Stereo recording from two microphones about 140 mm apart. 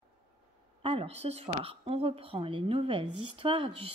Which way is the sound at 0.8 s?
45° right (ahead or behind).